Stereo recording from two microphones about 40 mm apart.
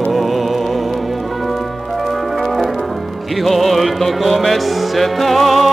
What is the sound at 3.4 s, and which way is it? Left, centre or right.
Music, centre.